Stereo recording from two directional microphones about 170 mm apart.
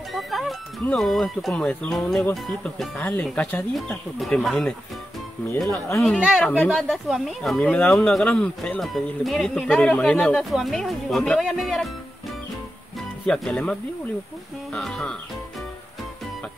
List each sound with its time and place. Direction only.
0.1 s speech: centre (ahead or behind)
5.9 s speech: centre (ahead or behind)
6.4 s speech: 10° left (ahead or behind)
6.7 s speech: centre (ahead or behind)
13.3 s speech: 5° left (ahead or behind)